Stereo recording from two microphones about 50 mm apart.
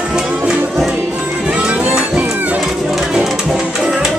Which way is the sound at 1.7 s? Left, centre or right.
Right.